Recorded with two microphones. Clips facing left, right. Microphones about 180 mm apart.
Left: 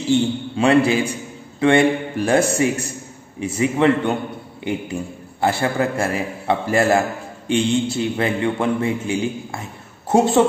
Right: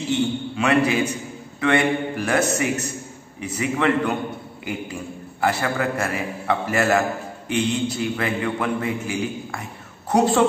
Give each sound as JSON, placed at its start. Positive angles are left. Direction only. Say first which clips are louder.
{"t": 0.1, "sound": "a man's voice", "louder": "left 5 dB", "side_deg": 30}